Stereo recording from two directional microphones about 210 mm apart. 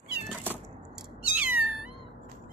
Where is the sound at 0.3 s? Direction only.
10° right (ahead or behind).